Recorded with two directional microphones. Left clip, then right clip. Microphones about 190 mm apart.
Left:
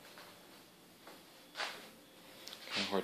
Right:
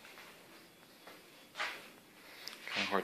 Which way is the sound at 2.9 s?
10° left (ahead or behind).